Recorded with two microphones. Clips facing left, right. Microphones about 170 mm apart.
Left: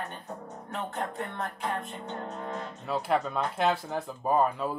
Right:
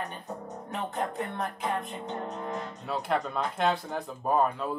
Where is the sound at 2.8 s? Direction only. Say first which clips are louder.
Left 2 dB; centre (ahead or behind).